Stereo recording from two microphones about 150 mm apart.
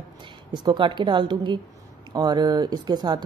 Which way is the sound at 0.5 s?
30° right (ahead or behind).